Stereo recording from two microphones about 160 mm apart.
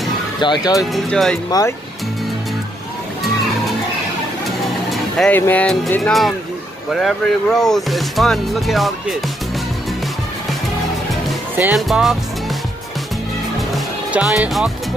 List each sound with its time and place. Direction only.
0.4 s speech: 30° left (ahead or behind)
0.7 s speech: centre (ahead or behind)
1.5 s speech: 20° left (ahead or behind)
4.9 s speech: 5° left (ahead or behind)
11.7 s speech: centre (ahead or behind)
13.6 s music: centre (ahead or behind)